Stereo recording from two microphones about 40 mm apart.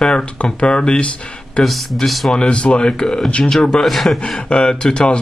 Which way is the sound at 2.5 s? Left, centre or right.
Left.